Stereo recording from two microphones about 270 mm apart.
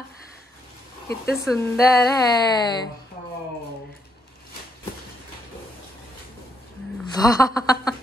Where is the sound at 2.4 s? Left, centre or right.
Centre.